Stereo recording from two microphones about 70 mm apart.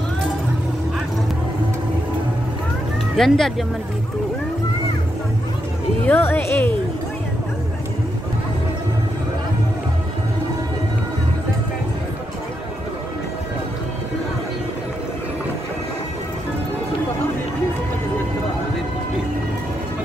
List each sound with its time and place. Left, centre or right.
3.2 s speech: centre
6.0 s speech: left